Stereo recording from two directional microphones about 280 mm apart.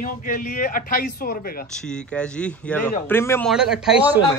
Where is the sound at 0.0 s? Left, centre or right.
Left.